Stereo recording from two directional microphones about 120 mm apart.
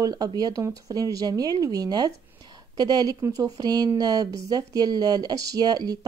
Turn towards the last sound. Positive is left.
turn(degrees=-35)  # may be behind; listen again after turning